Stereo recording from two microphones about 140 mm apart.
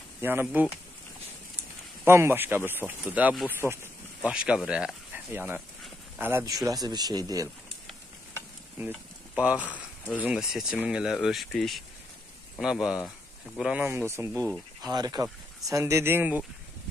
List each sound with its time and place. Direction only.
0.2 s speech: 15° right (ahead or behind)
2.0 s speech: 15° right (ahead or behind)
4.2 s speech: 5° right (ahead or behind)
6.6 s speech: 25° right (ahead or behind)
8.7 s a sound: 10° right (ahead or behind)
10.2 s speech: 5° right (ahead or behind)